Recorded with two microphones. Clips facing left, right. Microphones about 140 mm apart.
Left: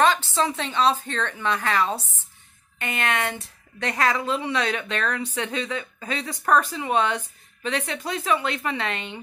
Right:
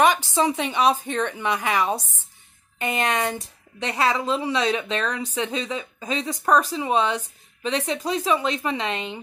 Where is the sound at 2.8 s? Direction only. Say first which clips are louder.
Right 3 dB; 35° right (ahead or behind).